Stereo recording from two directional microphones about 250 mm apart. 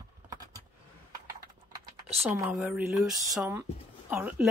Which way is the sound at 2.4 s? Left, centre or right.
Centre.